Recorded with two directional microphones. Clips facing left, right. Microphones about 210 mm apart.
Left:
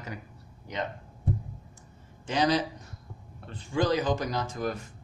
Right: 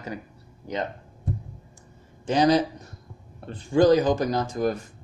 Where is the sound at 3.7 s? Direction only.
40° right (ahead or behind).